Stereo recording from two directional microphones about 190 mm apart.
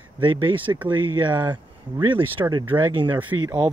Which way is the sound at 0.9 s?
25° right (ahead or behind).